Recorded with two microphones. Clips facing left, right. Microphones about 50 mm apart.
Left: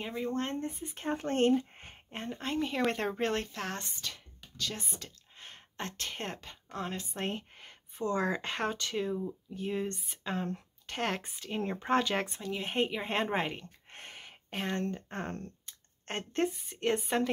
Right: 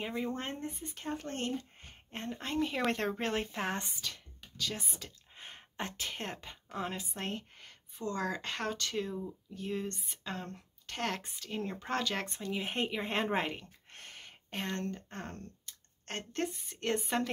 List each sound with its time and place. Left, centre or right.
0.0 s speech: centre
0.9 s speech: left
1.8 s a sound: left
2.1 s speech: centre
3.5 s speech: centre
4.0 s a woman's voice: centre
7.2 s speech: centre
12.4 s speech: centre
13.9 s a sound: left
14.2 s speech: centre
15.1 s speech: left
16.1 s a woman's voice: centre